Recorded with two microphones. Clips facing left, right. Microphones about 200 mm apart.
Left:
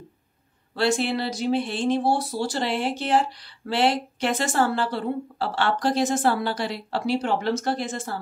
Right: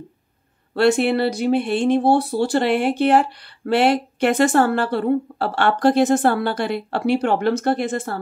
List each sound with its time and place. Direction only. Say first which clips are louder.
0.7 s speech: right 7 dB; 60° right (ahead or behind)